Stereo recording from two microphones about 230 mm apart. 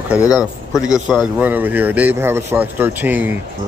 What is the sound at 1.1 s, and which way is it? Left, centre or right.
Speech, centre.